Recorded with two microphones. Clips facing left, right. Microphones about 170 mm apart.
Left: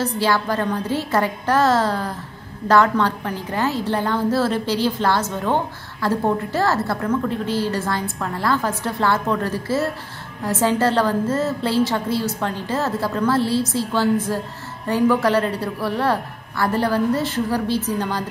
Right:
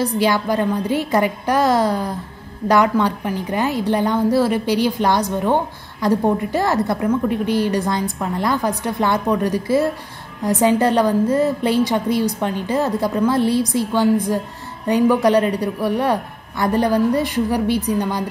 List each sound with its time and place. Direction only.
0.0 s a woman's voice: 15° right (ahead or behind)